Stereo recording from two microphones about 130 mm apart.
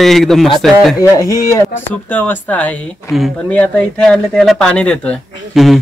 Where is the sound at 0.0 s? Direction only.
Centre (ahead or behind).